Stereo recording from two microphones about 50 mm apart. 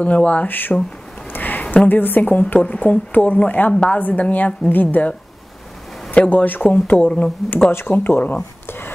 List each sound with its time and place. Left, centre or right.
0.0 s speech: left
0.5 s a woman's voice: left
1.3 s a sound: left
1.9 s a woman's voice: left
6.1 s a woman's voice: left
7.4 s speech: centre
7.8 s a woman's voice: left
8.6 s a sound: left